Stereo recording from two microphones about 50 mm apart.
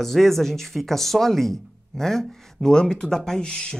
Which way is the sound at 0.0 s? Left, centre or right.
Centre.